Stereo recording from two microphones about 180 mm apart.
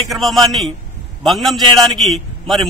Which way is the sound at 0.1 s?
Centre (ahead or behind).